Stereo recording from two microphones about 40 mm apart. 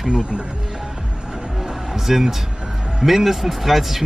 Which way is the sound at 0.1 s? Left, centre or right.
Right.